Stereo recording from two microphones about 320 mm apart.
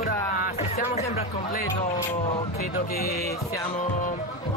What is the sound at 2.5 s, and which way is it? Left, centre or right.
Speech, left.